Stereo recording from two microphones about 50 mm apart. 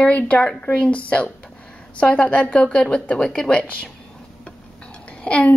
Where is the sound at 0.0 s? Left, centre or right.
Left.